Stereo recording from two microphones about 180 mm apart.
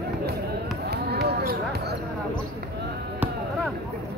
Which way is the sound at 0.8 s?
65° right (ahead or behind).